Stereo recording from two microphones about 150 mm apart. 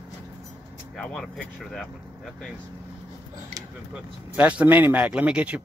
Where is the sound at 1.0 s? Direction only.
5° left (ahead or behind).